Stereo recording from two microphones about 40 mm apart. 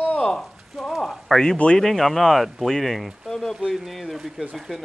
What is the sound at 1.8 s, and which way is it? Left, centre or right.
Speech, centre.